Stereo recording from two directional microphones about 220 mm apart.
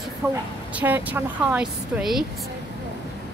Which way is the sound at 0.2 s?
5° right (ahead or behind).